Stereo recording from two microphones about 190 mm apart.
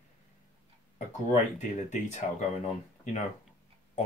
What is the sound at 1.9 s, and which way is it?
Speech, 40° left (ahead or behind).